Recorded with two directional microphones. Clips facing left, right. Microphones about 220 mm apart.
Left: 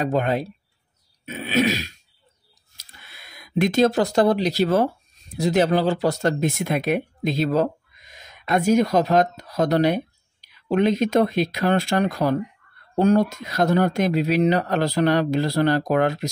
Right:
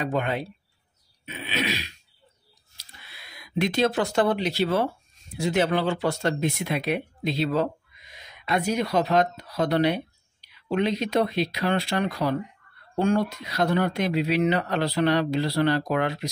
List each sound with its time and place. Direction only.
0.0 s speech: 40° left (ahead or behind)